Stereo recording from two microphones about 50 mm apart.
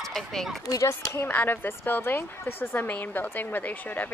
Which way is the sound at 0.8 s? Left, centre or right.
Left.